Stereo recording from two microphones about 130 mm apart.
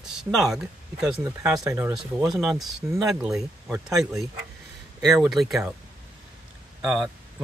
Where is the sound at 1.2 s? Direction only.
25° right (ahead or behind).